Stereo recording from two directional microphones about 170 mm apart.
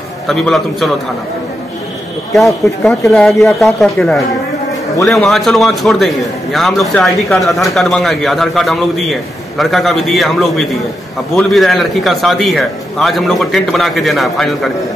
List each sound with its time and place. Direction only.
0.3 s a man's voice: centre (ahead or behind)
2.3 s a man's voice: centre (ahead or behind)